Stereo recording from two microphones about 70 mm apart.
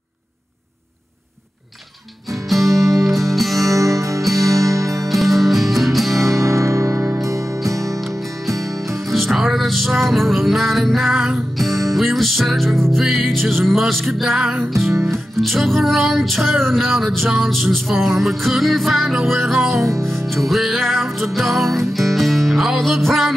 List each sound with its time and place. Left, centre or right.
2.7 s music: right
3.0 s music: centre
3.6 s music: right
5.0 s music: centre
6.2 s music: right
9.1 s music: centre
14.4 s music: centre
14.9 s music: right
15.4 s music: centre